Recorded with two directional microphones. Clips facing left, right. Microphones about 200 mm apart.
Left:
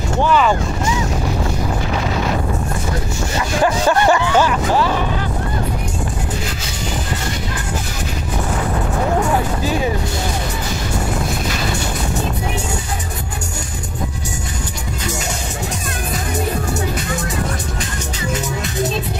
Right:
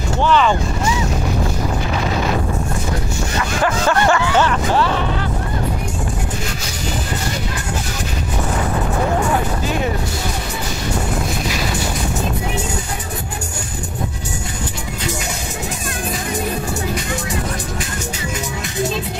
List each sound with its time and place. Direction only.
0.2 s speech: 5° left (ahead or behind)
3.3 s speech: 20° left (ahead or behind)